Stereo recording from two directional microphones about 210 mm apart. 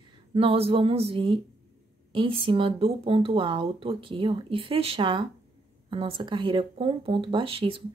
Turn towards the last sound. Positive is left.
turn(degrees=-25)  # may be behind; listen again after turning